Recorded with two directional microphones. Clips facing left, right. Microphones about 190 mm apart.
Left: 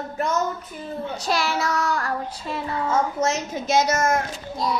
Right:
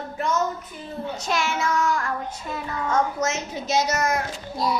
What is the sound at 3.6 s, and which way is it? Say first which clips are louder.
Speech: left 3 dB; 50° left (ahead or behind).